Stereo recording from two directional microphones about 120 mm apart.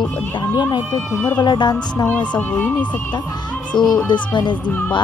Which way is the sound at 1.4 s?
35° left (ahead or behind).